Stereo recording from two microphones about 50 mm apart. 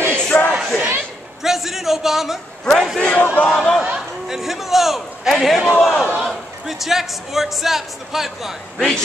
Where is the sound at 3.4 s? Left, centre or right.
Left.